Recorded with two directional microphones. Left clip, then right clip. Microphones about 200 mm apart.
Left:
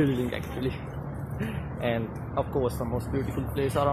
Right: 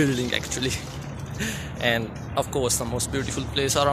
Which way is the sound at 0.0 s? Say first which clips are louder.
Right 4 dB; 10° right (ahead or behind).